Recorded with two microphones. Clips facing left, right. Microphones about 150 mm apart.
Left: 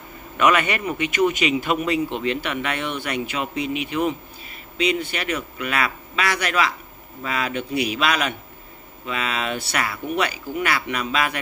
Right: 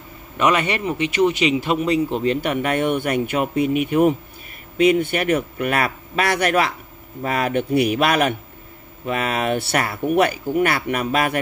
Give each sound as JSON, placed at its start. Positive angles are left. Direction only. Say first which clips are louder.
{"t": 0.4, "sound": "a man's voice", "louder": "even", "side_deg": -30}